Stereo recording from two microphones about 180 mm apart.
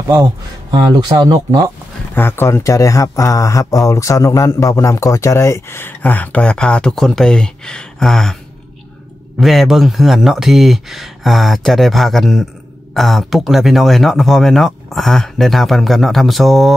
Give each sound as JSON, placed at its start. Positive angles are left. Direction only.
{"t": 0.1, "sound": "speech", "side_deg": -20}
{"t": 2.1, "sound": "speech", "side_deg": 10}
{"t": 9.4, "sound": "speech", "side_deg": 0}